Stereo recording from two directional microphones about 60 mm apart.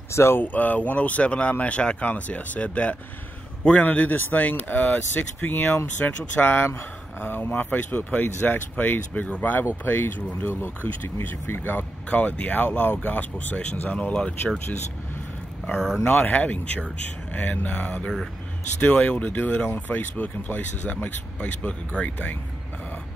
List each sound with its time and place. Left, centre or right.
0.1 s speech: left
0.4 s speech: left
12.1 s speech: left
16.1 s speech: left